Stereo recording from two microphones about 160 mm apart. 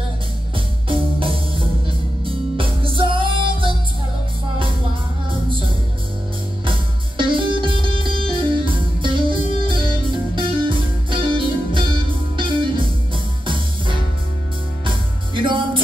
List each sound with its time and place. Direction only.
0.8 s music: 35° right (ahead or behind)
6.6 s music: 30° right (ahead or behind)